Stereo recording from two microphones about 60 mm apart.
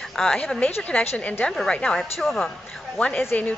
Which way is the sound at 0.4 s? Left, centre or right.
Left.